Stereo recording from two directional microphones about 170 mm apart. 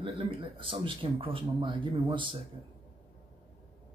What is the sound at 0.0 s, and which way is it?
Speech, 30° right (ahead or behind).